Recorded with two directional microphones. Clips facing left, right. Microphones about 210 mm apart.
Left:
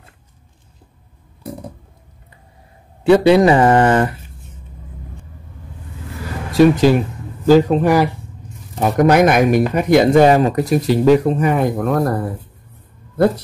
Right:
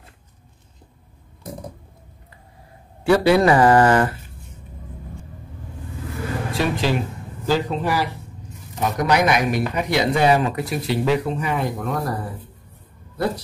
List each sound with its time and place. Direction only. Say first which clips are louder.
3.0 s speech: left 5 dB; 20° left (ahead or behind)
6.6 s speech: left 12 dB; 45° left (ahead or behind)
11.8 s speech: left 8 dB; 60° left (ahead or behind)